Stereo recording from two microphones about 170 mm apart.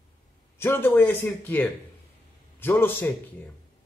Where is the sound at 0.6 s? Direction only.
15° left (ahead or behind).